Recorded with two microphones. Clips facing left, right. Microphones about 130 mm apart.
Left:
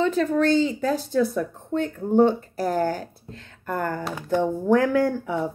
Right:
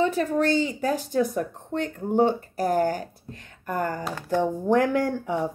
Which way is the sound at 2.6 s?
15° right (ahead or behind).